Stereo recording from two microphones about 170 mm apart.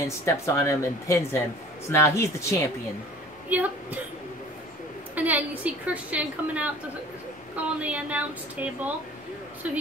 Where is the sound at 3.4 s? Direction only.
10° right (ahead or behind).